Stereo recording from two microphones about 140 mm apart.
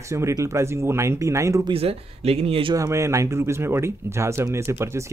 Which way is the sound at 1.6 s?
45° right (ahead or behind).